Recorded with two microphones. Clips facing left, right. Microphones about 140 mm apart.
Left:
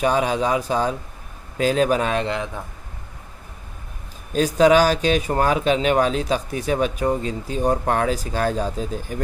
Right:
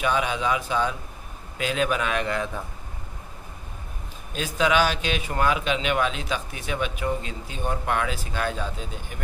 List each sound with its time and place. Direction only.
0.0 s speech: 35° left (ahead or behind); by 2.6 s 20° left (ahead or behind)
4.6 s speech: 40° left (ahead or behind)